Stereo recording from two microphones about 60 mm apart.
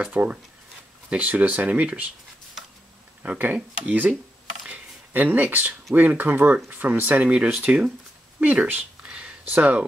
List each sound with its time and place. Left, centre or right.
0.0 s speech: right
3.2 s speech: right
4.6 s a sound: right
5.9 s speech: right
9.0 s a sound: centre
9.6 s speech: right